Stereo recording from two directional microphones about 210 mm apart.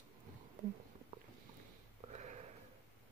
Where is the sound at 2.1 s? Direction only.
35° right (ahead or behind).